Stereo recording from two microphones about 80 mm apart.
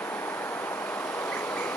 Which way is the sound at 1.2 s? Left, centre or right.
Centre.